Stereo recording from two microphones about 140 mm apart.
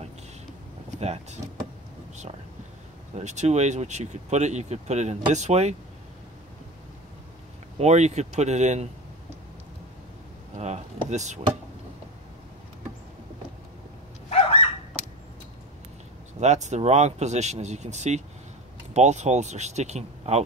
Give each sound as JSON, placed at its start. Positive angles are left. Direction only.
{"t": 0.9, "sound": "speech", "side_deg": -50}
{"t": 3.2, "sound": "speech", "side_deg": -55}
{"t": 7.8, "sound": "speech", "side_deg": -55}
{"t": 10.6, "sound": "speech", "side_deg": -55}
{"t": 14.3, "sound": "dog", "side_deg": 45}
{"t": 16.3, "sound": "speech", "side_deg": -55}